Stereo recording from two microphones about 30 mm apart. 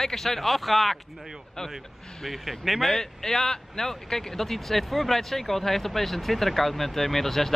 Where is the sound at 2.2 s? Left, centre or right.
Centre.